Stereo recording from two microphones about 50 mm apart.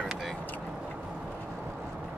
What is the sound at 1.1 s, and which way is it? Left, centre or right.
Vehicle, centre.